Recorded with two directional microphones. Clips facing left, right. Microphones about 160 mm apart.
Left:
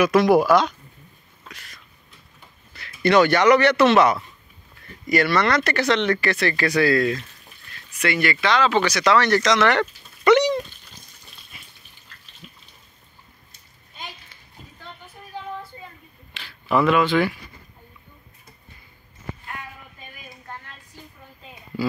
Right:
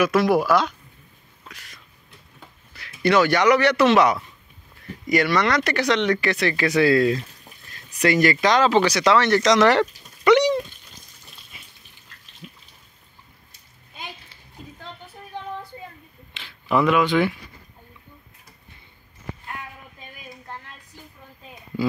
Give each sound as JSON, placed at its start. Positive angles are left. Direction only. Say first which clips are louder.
{"t": 0.0, "sound": "speech", "louder": "left 2 dB", "side_deg": 0}
{"t": 2.7, "sound": "speech", "louder": "left 1 dB", "side_deg": -10}
{"t": 7.7, "sound": "speech", "louder": "right 4 dB", "side_deg": -40}
{"t": 9.5, "sound": "speech", "louder": "right 6 dB", "side_deg": -35}
{"t": 10.2, "sound": "cat", "louder": "even", "side_deg": -10}
{"t": 16.3, "sound": "a sound", "louder": "even", "side_deg": -20}